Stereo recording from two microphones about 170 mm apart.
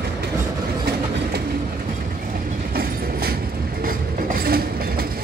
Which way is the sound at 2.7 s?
65° right (ahead or behind).